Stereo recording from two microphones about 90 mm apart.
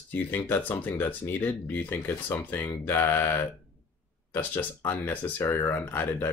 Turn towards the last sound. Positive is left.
turn(degrees=25)  # may be behind; listen again after turning